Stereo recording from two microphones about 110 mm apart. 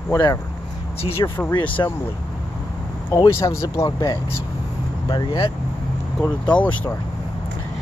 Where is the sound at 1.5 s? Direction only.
45° left (ahead or behind).